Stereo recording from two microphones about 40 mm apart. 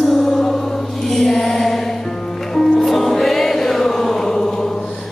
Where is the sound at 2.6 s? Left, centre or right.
Centre.